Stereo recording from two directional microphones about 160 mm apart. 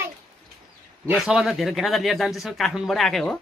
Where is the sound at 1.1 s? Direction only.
5° right (ahead or behind).